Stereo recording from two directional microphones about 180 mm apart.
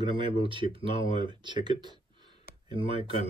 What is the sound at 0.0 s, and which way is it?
Speech, 30° right (ahead or behind).